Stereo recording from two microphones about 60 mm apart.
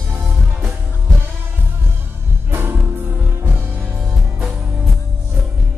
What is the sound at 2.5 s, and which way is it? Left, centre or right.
Music, right.